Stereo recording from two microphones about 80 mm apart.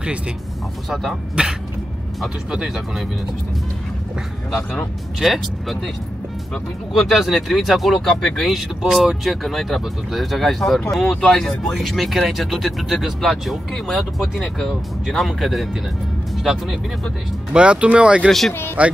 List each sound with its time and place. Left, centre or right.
0.8 s speech: centre
1.4 s speech: centre
4.5 s speech: centre
6.9 s speech: centre
17.5 s speech: centre